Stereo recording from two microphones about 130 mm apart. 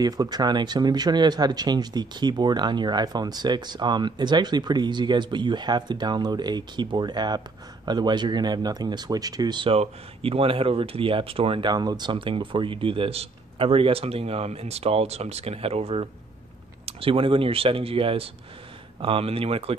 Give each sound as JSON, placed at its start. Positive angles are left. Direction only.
{"t": 0.0, "sound": "speech", "side_deg": -30}
{"t": 11.7, "sound": "speech", "side_deg": -30}